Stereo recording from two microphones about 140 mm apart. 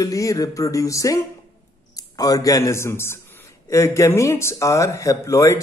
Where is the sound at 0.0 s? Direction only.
25° left (ahead or behind).